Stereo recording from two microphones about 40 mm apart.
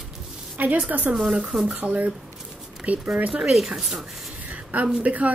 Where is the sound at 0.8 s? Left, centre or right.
Right.